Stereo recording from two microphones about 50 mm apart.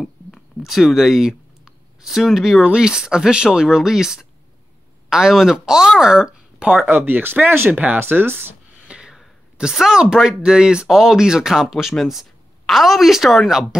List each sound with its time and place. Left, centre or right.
0.6 s speech: centre
2.6 s speech: centre
6.7 s speech: right
7.7 s speech: right
8.0 s speech: right
8.8 s a sound: centre
9.8 s speech: centre